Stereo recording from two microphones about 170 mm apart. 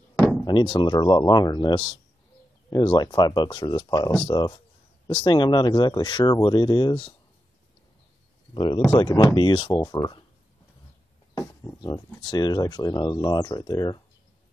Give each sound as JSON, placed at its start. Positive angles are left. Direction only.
{"t": 0.5, "sound": "speech", "side_deg": 30}
{"t": 8.5, "sound": "speech", "side_deg": 25}
{"t": 11.3, "sound": "speech", "side_deg": 20}